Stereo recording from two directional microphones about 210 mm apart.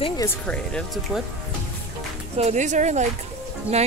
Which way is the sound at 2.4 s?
35° right (ahead or behind).